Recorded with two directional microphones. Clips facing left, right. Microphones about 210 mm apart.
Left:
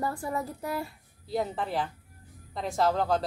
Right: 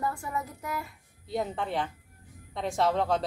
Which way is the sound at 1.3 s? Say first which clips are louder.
Left 1 dB; centre (ahead or behind).